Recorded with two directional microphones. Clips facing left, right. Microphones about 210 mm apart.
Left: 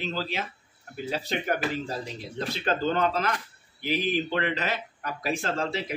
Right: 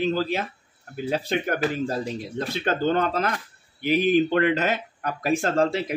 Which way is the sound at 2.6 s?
45° right (ahead or behind).